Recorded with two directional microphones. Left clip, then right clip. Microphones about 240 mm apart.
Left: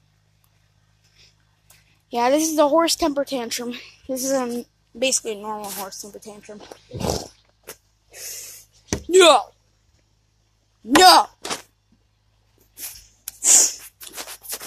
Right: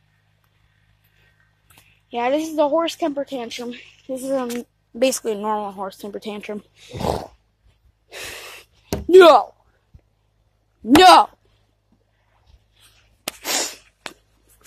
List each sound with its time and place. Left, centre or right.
2.0 s speech: centre
4.9 s speech: right
5.9 s speech: right
6.9 s a sound: centre
8.1 s a sound: right
9.1 s speech: right
11.0 s speech: right
13.4 s sneeze: centre